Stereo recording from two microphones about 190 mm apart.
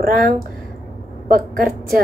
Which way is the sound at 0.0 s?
50° right (ahead or behind).